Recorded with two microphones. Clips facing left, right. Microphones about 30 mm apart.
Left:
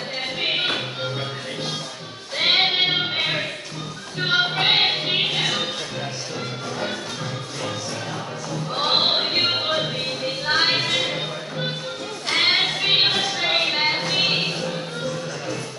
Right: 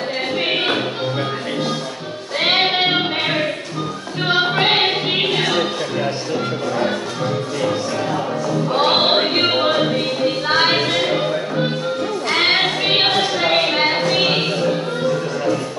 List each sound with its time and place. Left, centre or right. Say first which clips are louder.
0.4 s music: right 3 dB; centre
2.4 s music: right 2 dB; centre
8.7 s music: right 4 dB; centre
12.3 s a sound: right 2 dB; centre